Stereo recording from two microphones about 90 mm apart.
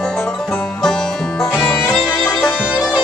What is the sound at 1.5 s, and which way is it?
Music, 15° left (ahead or behind).